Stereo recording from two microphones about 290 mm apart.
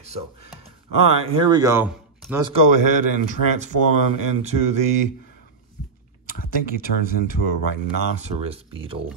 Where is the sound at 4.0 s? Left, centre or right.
Right.